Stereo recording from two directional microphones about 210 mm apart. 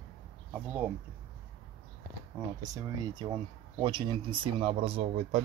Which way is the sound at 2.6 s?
20° right (ahead or behind).